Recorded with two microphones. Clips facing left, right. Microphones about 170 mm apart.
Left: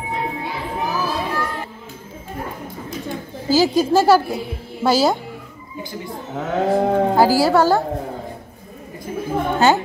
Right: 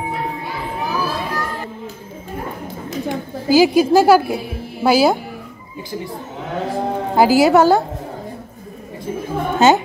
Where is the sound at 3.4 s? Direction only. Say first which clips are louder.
Right 4 dB; 10° right (ahead or behind).